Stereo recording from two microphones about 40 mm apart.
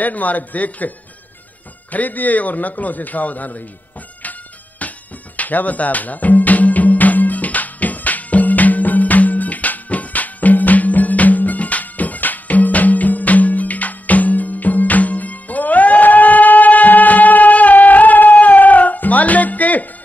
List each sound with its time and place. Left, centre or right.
0.0 s a man's voice: left
4.2 s music: left